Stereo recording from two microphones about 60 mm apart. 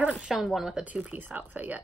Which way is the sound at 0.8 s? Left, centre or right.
Right.